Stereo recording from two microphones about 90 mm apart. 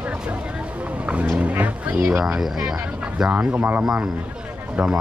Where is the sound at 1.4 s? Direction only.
15° right (ahead or behind).